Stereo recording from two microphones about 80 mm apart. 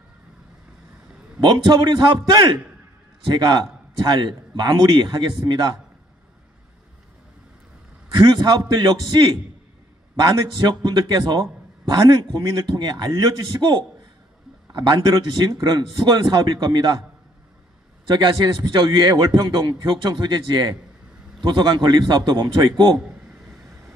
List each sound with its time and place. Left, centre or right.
1.4 s a man's voice: right
8.1 s a man's voice: right
18.0 s a man's voice: right